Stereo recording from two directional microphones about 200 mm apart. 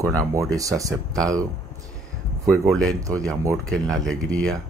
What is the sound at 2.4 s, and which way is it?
Speech, 5° left (ahead or behind).